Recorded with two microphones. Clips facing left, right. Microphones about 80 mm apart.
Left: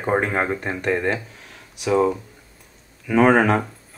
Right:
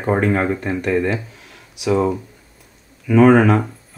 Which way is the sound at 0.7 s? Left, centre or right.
Left.